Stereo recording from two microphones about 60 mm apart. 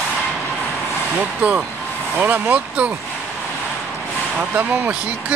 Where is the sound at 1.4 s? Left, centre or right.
Right.